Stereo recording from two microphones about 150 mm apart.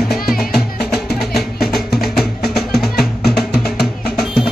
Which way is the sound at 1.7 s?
90° left.